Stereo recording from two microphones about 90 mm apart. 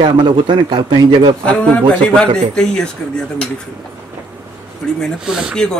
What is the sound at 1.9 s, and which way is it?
Speech, 10° left (ahead or behind).